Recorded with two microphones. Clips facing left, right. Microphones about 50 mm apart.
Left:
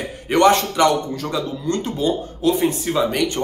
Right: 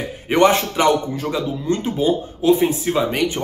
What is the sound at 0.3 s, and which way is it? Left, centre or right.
Speech, centre.